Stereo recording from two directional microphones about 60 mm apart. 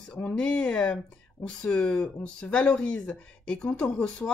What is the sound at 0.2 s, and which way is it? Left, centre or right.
Speech, left.